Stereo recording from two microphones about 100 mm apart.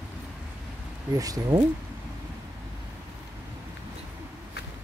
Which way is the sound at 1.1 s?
35° right (ahead or behind).